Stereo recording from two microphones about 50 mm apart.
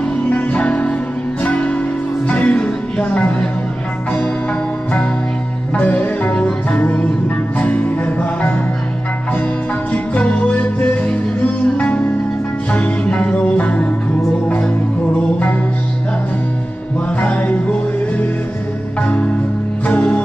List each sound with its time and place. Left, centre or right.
0.3 s music: left
5.8 s music: left
10.1 s music: left
17.2 s music: left